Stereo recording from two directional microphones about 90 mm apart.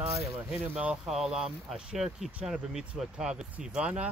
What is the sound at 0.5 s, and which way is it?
Speech, 10° right (ahead or behind).